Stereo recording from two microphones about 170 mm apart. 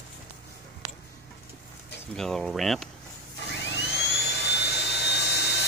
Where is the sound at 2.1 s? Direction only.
Centre (ahead or behind).